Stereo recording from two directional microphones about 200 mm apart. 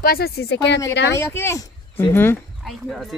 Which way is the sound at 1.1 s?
15° left (ahead or behind).